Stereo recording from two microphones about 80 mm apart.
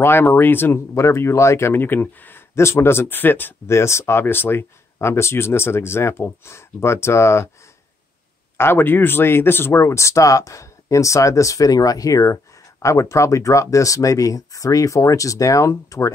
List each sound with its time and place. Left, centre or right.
0.0 s speech: left
8.5 s speech: left